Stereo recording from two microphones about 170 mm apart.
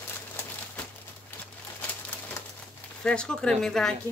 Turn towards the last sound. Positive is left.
turn(degrees=5)  # may be behind; listen again after turning